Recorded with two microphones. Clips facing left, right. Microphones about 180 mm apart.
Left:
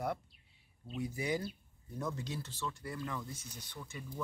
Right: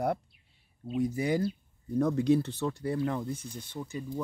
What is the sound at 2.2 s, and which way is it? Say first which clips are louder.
Speech: right 16 dB; 60° right (ahead or behind).